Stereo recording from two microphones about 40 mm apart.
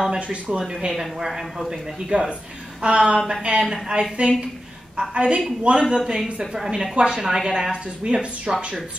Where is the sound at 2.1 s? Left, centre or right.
Right.